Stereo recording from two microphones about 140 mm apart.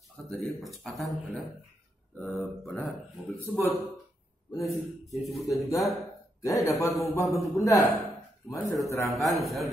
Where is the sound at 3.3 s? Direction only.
15° left (ahead or behind).